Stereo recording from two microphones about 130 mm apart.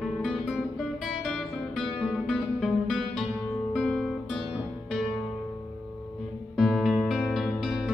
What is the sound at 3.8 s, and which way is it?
Guitar, 5° left (ahead or behind).